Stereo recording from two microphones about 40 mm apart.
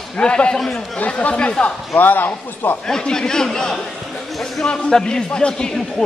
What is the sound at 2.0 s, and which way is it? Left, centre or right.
Speech, left.